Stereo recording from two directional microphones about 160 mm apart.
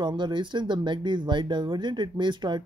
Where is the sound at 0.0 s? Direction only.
30° right (ahead or behind).